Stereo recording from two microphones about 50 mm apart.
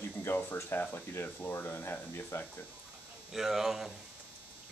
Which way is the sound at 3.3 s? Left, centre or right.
Centre.